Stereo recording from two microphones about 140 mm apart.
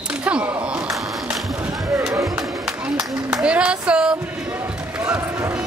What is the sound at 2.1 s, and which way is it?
Music, 20° right (ahead or behind).